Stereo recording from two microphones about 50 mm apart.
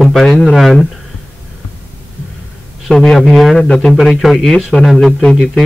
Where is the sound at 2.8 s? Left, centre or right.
Centre.